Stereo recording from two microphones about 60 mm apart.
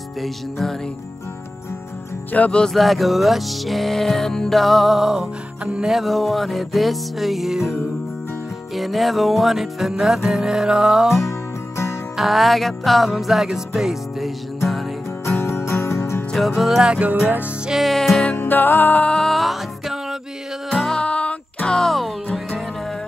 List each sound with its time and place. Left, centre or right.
0.2 s music: centre
2.3 s music: left
2.6 s music: centre
5.2 s music: centre
5.9 s music: centre
11.2 s music: left
12.2 s music: centre
15.4 s music: left
16.3 s music: centre
18.2 s music: left
19.0 s music: centre
19.3 s music: centre
20.9 s music: centre
21.7 s music: centre